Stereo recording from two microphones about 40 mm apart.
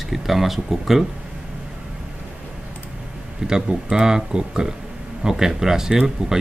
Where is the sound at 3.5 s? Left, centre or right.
Centre.